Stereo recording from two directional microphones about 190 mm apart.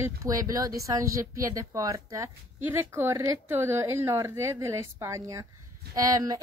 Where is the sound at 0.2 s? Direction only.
20° right (ahead or behind).